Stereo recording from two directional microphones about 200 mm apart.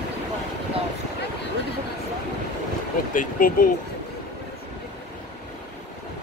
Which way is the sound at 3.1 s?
45° left (ahead or behind).